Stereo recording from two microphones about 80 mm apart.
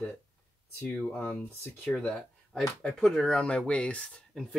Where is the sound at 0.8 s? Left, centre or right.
Centre.